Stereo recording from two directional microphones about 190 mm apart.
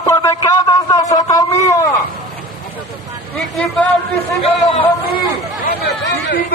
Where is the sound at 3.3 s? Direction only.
Centre (ahead or behind).